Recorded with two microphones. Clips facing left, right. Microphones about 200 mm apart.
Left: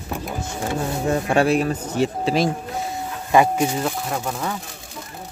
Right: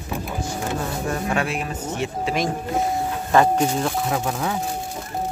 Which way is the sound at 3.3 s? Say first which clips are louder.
Left 1 dB; 10° left (ahead or behind).